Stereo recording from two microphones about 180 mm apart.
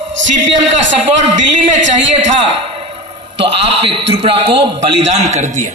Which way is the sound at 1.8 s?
90° right.